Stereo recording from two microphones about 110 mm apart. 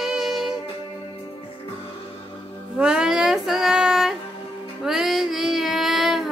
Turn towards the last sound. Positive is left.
turn(degrees=0)  # may be behind; listen again after turning